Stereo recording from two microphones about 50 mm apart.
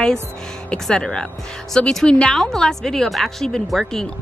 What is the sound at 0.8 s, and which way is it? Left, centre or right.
Speech, centre.